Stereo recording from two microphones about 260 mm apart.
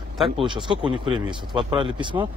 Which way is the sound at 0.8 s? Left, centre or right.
Centre.